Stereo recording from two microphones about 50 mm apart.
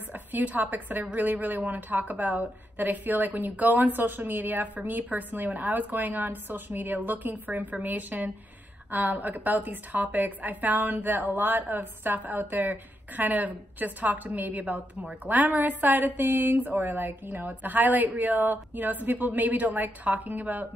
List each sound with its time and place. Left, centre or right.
0.1 s a woman's voice: right